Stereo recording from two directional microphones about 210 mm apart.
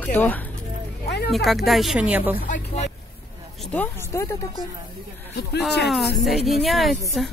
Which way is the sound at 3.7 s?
10° left (ahead or behind).